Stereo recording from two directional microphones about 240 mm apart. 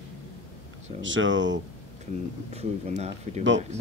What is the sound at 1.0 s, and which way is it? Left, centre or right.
Speech, right.